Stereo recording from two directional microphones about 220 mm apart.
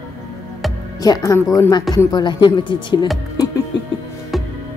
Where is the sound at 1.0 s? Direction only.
15° left (ahead or behind).